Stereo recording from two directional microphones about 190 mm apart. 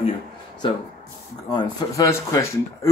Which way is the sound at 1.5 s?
20° left (ahead or behind).